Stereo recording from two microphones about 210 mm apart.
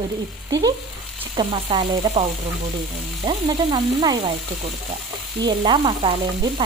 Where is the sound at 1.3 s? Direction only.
25° right (ahead or behind).